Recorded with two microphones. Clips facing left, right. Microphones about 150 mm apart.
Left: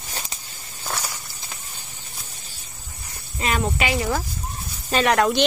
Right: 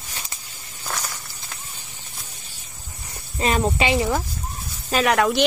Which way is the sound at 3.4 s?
35° right (ahead or behind).